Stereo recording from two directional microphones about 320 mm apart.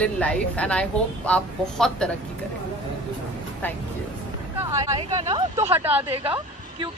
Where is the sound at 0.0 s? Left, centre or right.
Centre.